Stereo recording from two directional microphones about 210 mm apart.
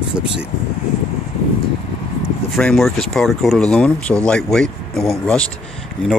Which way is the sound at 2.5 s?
Centre (ahead or behind).